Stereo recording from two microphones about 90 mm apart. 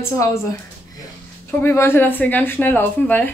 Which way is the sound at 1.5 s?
25° left (ahead or behind).